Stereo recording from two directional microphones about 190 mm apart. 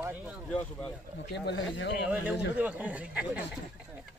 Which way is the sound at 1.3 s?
70° left (ahead or behind).